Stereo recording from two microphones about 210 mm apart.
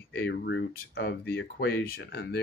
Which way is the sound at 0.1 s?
50° left (ahead or behind).